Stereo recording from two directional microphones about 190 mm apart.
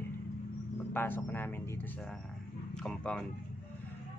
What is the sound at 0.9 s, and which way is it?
Speech, 10° left (ahead or behind).